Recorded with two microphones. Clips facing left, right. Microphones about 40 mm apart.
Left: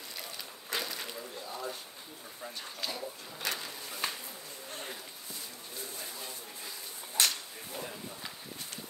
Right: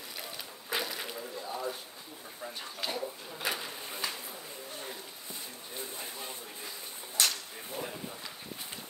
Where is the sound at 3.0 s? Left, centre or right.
Centre.